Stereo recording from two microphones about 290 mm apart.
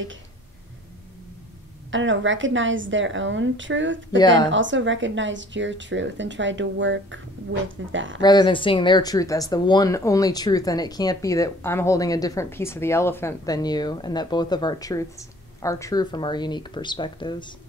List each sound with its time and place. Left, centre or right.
1.9 s a woman's voice: right
8.2 s speech: centre